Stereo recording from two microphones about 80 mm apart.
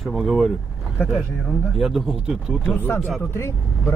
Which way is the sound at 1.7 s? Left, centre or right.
Centre.